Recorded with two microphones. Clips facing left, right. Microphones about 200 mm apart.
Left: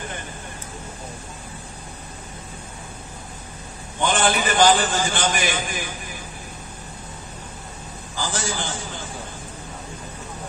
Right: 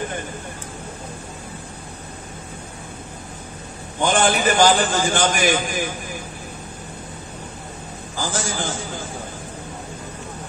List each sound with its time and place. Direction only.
4.0 s a man's voice: 45° right (ahead or behind)
8.2 s a man's voice: 45° right (ahead or behind)